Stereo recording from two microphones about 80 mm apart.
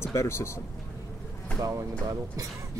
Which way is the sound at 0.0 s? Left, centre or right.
Left.